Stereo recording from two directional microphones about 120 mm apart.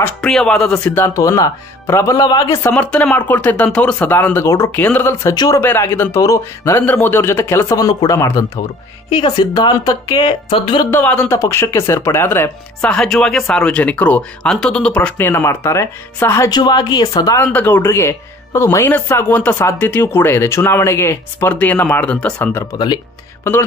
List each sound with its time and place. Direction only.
0.2 s speech: 5° left (ahead or behind)
1.0 s speech: 25° left (ahead or behind)
2.7 s speech: 10° left (ahead or behind)
5.3 s a woman's voice: 35° left (ahead or behind)
5.6 s a woman's voice: 20° left (ahead or behind); by 10.6 s 35° left (ahead or behind)
10.9 s speech: 15° left (ahead or behind)
11.3 s speech: 25° left (ahead or behind)
12.8 s speech: 5° left (ahead or behind); by 16.4 s 20° left (ahead or behind)
16.4 s a woman's voice: 35° left (ahead or behind)
17.4 s speech: 15° left (ahead or behind)